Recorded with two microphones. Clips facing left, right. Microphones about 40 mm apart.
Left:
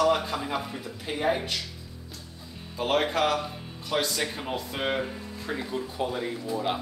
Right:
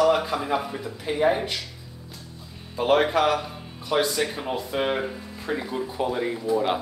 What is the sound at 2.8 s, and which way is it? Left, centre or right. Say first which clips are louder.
Speech: right 5 dB; centre.